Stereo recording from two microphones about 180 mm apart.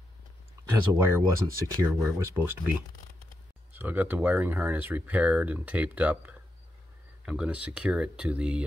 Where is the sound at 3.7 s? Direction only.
10° right (ahead or behind).